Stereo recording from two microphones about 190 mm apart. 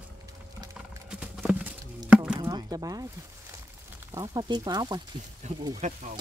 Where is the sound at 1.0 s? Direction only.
5° right (ahead or behind).